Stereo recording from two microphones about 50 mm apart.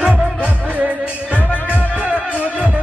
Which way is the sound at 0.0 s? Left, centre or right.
Right.